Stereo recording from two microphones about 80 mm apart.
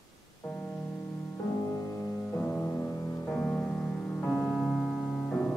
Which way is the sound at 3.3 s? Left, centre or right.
Centre.